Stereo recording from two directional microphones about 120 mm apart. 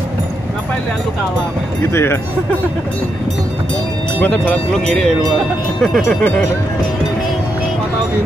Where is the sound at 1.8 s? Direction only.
20° left (ahead or behind).